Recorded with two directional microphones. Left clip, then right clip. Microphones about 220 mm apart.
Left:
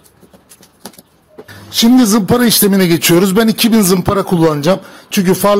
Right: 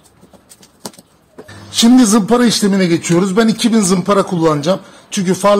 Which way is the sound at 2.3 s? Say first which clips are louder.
Left 2 dB; 45° left (ahead or behind).